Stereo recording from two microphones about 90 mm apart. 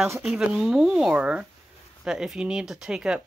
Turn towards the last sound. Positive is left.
turn(degrees=-5)  # may be behind; listen again after turning